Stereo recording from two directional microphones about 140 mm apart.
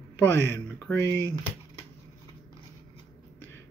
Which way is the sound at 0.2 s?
20° left (ahead or behind).